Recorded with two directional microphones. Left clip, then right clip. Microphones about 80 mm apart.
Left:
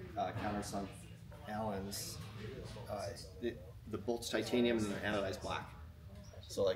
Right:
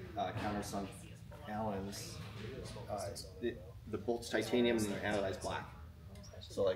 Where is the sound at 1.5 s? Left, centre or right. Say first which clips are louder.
Even; left.